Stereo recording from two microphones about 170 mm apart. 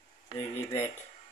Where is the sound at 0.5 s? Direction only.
40° left (ahead or behind).